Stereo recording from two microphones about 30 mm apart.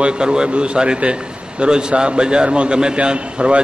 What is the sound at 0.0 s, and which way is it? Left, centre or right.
A man's voice, right.